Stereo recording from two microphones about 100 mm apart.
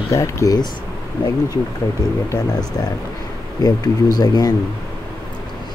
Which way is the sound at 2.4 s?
40° left (ahead or behind).